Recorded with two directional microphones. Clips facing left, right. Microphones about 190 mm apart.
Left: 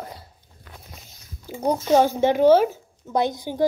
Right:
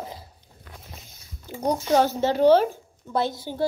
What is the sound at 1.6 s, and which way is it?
Speech, 10° left (ahead or behind).